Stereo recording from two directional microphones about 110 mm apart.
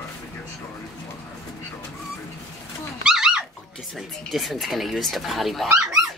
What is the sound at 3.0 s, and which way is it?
Dog, 5° right (ahead or behind).